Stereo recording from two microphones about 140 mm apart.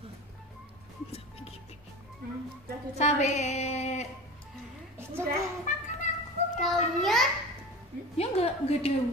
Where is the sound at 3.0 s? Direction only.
55° left (ahead or behind).